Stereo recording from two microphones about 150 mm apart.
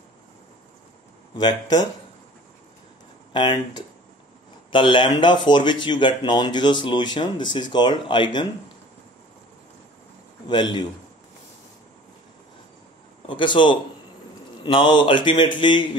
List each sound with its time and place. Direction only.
1.3 s speech: 30° left (ahead or behind)
3.3 s speech: 30° left (ahead or behind)
10.5 s speech: 30° left (ahead or behind)
13.3 s speech: 30° left (ahead or behind)